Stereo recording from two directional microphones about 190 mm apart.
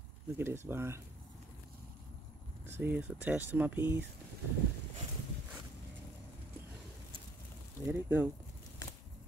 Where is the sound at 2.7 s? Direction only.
10° right (ahead or behind).